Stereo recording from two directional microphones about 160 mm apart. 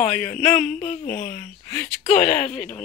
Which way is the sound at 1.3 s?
10° left (ahead or behind).